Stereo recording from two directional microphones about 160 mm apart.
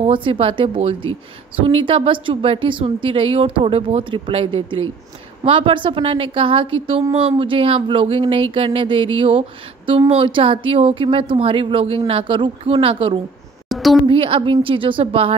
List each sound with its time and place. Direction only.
0.0 s a woman's voice: 35° right (ahead or behind)
13.7 s a sound: centre (ahead or behind)
14.0 s a woman's voice: 35° right (ahead or behind)